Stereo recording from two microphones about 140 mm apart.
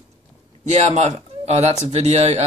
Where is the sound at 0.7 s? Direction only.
55° right (ahead or behind).